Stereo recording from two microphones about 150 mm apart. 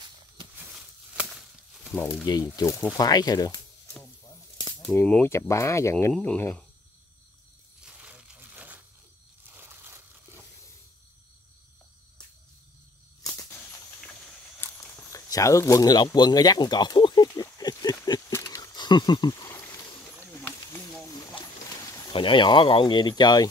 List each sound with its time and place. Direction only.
0.6 s a sound: 5° right (ahead or behind)
2.0 s speech: 15° left (ahead or behind)
2.2 s speech: 25° left (ahead or behind)
4.3 s snake: 25° left (ahead or behind)
4.8 s speech: 10° left (ahead or behind)
7.8 s coin: 5° right (ahead or behind)
9.5 s crushing: 15° right (ahead or behind)
13.2 s a sound: 20° left (ahead or behind)
14.6 s speech: 20° left (ahead or behind)
17.3 s a sound: 25° left (ahead or behind)
21.8 s a sound: 20° left (ahead or behind)
22.1 s speech: 35° left (ahead or behind)